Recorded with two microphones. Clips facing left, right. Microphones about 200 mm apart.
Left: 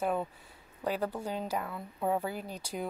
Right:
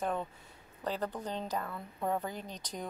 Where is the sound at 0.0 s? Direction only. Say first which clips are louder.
Left 3 dB; 10° left (ahead or behind).